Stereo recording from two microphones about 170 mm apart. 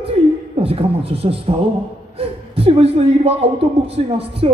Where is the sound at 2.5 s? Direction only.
35° right (ahead or behind).